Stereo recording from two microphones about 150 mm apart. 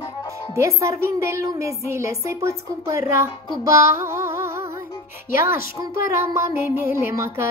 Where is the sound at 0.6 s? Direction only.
20° right (ahead or behind).